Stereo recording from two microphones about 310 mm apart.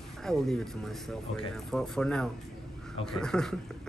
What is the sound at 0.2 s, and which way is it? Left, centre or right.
Speech, centre.